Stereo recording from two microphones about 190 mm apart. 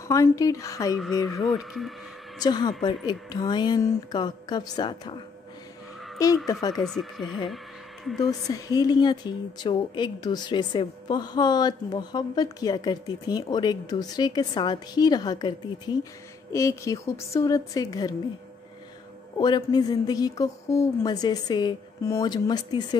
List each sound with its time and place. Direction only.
0.1 s a woman's voice: 15° left (ahead or behind)
1.4 s speech: centre (ahead or behind)
2.4 s a woman's voice: 20° left (ahead or behind)
6.7 s speech: centre (ahead or behind)
8.2 s a woman's voice: 20° left (ahead or behind)
19.3 s a woman's voice: 25° left (ahead or behind)